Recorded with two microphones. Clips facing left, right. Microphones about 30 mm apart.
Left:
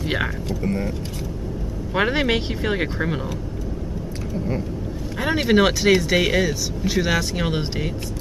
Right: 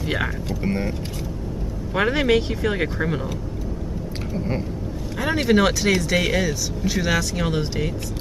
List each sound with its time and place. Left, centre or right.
0.7 s speech: right
2.0 s speech: centre
5.2 s speech: centre